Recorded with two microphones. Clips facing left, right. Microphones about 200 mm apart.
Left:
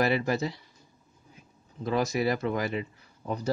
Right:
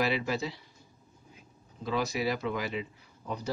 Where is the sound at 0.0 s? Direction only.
45° left (ahead or behind).